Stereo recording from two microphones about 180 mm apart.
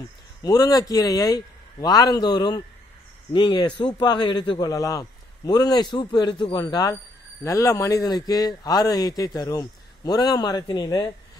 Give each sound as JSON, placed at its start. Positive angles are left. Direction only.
{"t": 0.4, "sound": "a man's voice", "side_deg": 20}